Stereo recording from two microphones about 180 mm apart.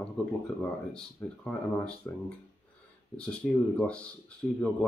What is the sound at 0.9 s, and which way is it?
Speech, 5° left (ahead or behind).